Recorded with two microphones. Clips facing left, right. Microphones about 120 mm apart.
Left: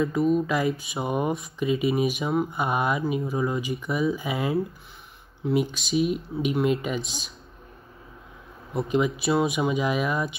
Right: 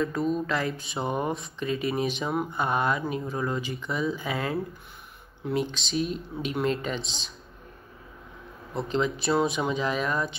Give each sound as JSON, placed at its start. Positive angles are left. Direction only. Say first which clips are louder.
{"t": 0.0, "sound": "speech", "louder": "left 4 dB", "side_deg": 10}
{"t": 7.0, "sound": "speech", "louder": "left 4 dB", "side_deg": -25}
{"t": 8.7, "sound": "speech", "louder": "left 3 dB", "side_deg": 10}